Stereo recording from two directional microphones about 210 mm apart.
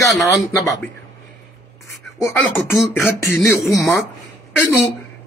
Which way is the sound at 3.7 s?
15° left (ahead or behind).